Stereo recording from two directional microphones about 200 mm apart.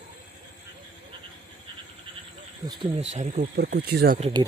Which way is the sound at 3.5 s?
50° right (ahead or behind).